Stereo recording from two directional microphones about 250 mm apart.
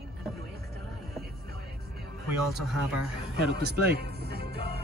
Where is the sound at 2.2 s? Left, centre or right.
Centre.